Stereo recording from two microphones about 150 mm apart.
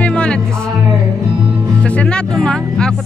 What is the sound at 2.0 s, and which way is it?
Speech, 5° left (ahead or behind).